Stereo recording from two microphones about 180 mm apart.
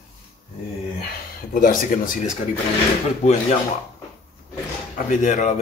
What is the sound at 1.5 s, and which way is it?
Speech, 50° left (ahead or behind).